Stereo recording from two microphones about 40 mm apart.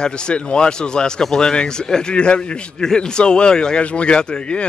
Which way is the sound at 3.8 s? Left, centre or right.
Left.